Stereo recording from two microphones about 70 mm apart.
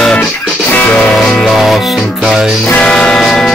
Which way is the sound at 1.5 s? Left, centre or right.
Centre.